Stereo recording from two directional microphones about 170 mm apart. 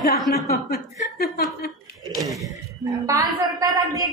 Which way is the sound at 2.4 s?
20° right (ahead or behind).